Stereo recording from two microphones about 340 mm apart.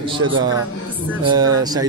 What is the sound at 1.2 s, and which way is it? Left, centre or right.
Speech, centre.